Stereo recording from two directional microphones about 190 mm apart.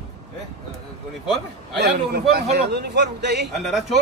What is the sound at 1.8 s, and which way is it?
A man's voice, 65° right (ahead or behind).